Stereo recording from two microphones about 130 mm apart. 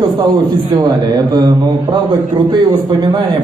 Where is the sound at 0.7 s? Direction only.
30° right (ahead or behind).